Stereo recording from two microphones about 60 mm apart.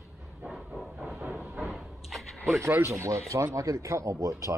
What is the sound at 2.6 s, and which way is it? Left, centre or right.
Speech, right.